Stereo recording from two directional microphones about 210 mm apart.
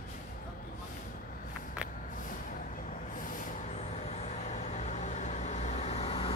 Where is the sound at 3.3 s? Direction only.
35° left (ahead or behind).